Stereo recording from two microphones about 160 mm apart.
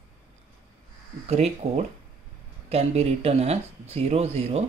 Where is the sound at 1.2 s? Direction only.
40° right (ahead or behind).